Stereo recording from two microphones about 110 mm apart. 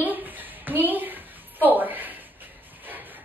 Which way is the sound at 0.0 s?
15° right (ahead or behind).